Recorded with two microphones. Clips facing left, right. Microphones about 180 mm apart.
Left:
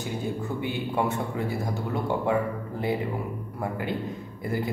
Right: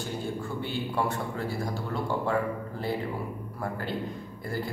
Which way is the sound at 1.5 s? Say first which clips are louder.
Left 3 dB; 20° left (ahead or behind).